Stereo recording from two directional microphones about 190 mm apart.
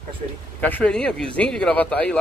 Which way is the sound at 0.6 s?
10° left (ahead or behind).